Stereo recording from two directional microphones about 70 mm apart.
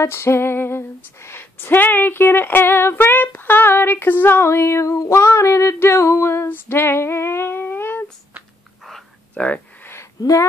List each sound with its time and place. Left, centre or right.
0.0 s female singing: left
9.3 s speech: centre